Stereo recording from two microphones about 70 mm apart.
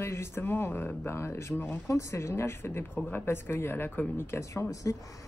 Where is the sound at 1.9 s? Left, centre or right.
Left.